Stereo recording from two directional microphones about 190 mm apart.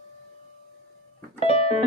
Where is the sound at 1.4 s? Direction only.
35° left (ahead or behind).